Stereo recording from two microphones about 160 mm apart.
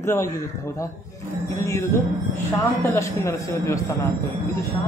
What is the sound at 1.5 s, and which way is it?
A man's voice, 20° left (ahead or behind).